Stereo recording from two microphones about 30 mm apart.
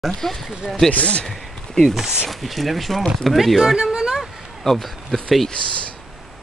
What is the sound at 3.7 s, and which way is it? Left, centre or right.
Speech, right.